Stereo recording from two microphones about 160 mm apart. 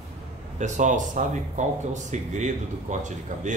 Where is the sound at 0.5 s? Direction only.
50° right (ahead or behind).